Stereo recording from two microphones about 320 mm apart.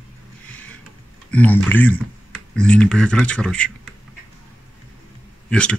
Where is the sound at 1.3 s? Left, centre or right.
Centre.